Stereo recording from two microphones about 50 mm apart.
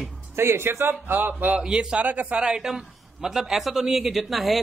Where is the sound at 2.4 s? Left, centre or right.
Centre.